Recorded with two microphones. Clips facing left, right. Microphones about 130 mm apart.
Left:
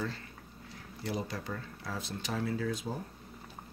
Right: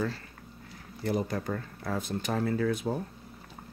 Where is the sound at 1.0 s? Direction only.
50° right (ahead or behind).